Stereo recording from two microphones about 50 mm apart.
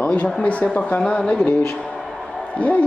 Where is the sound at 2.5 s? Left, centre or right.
Left.